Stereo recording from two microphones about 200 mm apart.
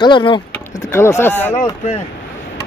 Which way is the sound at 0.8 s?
15° left (ahead or behind).